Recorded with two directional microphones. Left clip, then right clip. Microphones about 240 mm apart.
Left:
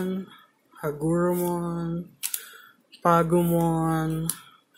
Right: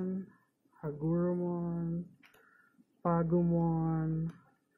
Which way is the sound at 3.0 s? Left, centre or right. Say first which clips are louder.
Left 11 dB; left.